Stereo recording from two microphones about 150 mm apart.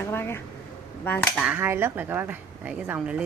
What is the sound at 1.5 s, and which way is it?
Speech, 15° right (ahead or behind).